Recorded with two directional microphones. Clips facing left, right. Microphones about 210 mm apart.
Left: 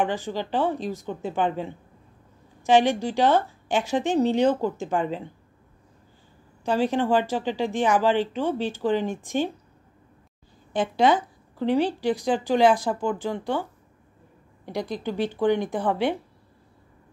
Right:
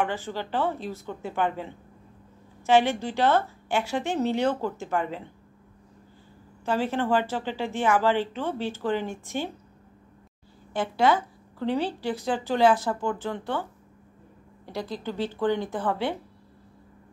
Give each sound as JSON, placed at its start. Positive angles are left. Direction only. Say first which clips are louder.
{"t": 0.0, "sound": "a woman's voice", "louder": "left 3 dB", "side_deg": 15}
{"t": 6.6, "sound": "a woman's voice", "louder": "left 3 dB", "side_deg": 15}
{"t": 10.7, "sound": "a woman's voice", "louder": "left 2 dB", "side_deg": 20}
{"t": 14.7, "sound": "a woman's voice", "louder": "left 3 dB", "side_deg": 15}